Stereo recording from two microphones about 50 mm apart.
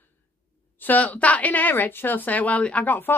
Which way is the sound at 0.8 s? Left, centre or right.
Left.